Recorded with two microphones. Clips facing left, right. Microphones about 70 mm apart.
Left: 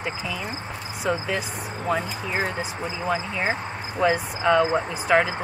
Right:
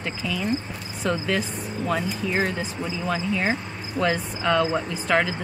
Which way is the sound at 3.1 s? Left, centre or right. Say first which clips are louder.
Right 1 dB; centre.